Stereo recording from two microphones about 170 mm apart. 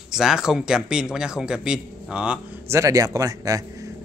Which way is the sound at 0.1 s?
5° right (ahead or behind).